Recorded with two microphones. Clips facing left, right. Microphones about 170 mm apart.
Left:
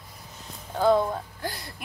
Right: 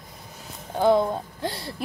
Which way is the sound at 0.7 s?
20° right (ahead or behind).